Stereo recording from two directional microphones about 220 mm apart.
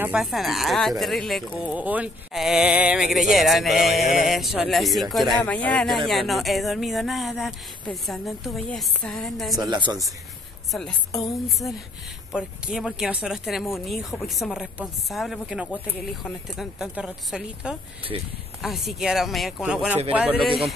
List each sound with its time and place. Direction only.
0.0 s speech: centre (ahead or behind)
9.6 s speech: 20° right (ahead or behind)
10.7 s speech: centre (ahead or behind)
18.1 s speech: 25° right (ahead or behind)
18.6 s a man's voice: centre (ahead or behind)